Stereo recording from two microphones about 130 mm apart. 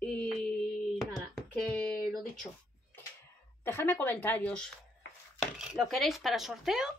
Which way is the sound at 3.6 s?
15° left (ahead or behind).